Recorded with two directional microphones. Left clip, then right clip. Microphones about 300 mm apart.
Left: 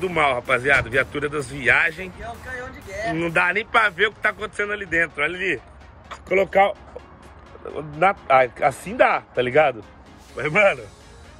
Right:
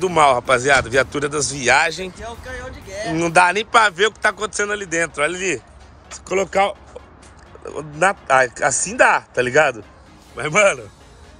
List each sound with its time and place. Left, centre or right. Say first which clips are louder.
0.0 s speech: right 6 dB; centre